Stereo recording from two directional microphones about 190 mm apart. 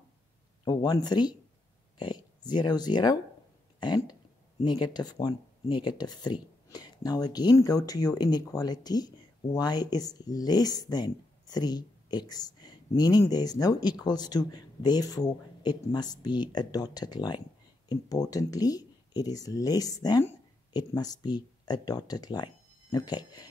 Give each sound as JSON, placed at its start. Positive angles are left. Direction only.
{"t": 0.7, "sound": "speech", "side_deg": 20}